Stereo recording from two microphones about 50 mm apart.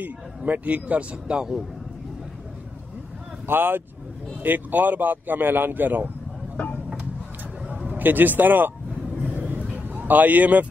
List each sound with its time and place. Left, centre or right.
0.5 s speech: right
3.4 s speech: right
6.5 s vehicle: left
8.0 s speech: right
9.8 s a man's voice: right